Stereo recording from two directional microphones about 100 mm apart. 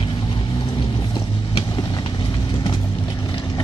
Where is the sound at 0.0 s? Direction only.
50° left (ahead or behind).